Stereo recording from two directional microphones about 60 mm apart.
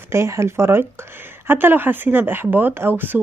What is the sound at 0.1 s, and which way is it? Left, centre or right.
Speech, right.